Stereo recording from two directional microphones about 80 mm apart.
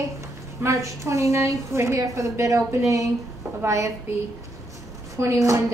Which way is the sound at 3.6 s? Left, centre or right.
Right.